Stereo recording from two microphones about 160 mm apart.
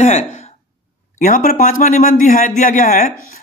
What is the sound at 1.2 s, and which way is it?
Speech, 55° left (ahead or behind).